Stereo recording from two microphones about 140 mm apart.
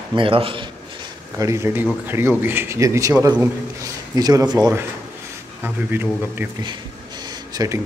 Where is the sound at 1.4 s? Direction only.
20° right (ahead or behind).